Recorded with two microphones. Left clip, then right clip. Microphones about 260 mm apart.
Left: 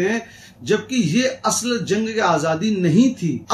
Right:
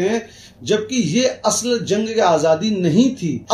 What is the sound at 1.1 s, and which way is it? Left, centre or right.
A man's voice, centre.